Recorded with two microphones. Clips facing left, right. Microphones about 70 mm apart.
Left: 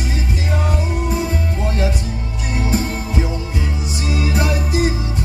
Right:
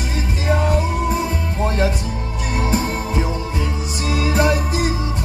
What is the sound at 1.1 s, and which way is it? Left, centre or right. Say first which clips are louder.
Music: even; right.